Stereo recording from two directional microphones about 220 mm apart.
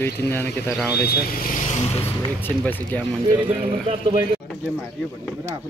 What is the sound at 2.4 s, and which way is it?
Speech, 10° left (ahead or behind).